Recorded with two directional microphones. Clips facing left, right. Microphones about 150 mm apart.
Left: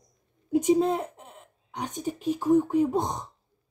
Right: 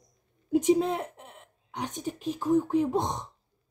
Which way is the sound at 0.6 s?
40° left (ahead or behind).